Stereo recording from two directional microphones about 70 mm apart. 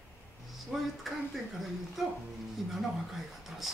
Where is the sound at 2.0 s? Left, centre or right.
Centre.